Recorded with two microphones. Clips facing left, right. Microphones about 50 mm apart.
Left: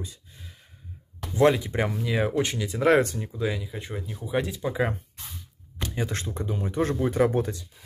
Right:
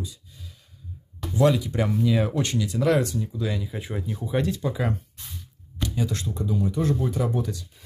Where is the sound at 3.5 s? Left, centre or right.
Centre.